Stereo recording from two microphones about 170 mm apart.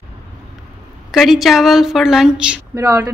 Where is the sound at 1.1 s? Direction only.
Centre (ahead or behind).